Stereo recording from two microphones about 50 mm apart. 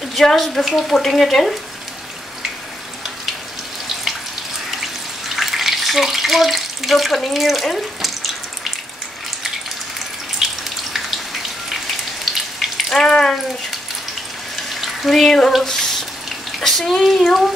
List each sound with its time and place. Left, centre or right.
0.1 s speech: centre
5.3 s bathtub: centre
10.4 s water tap: centre
12.9 s a sound: centre
14.7 s a sound: centre
16.5 s speech: centre